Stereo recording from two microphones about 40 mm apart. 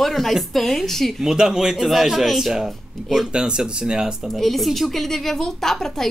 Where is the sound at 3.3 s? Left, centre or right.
Right.